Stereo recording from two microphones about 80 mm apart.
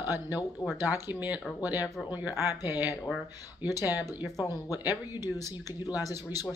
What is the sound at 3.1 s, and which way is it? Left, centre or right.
Speech, centre.